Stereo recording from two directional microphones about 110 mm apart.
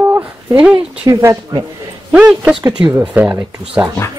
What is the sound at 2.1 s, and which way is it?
Speech, 10° right (ahead or behind).